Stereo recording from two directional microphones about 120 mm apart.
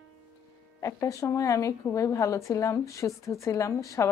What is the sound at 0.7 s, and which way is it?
A woman's voice, 25° left (ahead or behind).